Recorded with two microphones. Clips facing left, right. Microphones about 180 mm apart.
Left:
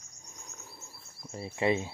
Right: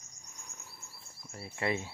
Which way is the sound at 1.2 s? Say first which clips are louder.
Left 6 dB; 20° left (ahead or behind).